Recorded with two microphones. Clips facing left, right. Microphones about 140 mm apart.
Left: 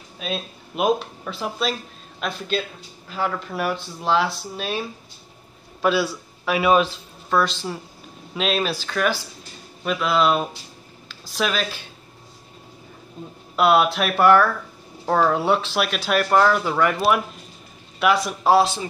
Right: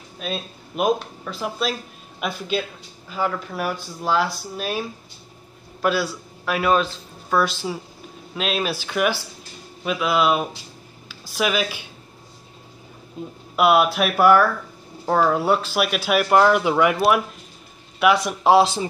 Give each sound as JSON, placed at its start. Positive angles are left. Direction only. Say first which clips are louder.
{"t": 0.2, "sound": "a man's voice", "louder": "even", "side_deg": 0}
{"t": 13.6, "sound": "speech", "louder": "right 1 dB", "side_deg": -5}